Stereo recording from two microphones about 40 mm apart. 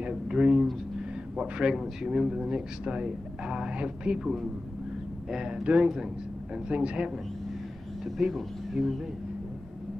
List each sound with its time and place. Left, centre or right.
0.0 s a sound: right
1.6 s a man's voice: centre
2.3 s speech: right
8.2 s speech: centre